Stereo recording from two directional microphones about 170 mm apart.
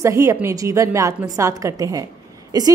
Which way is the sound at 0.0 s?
20° right (ahead or behind).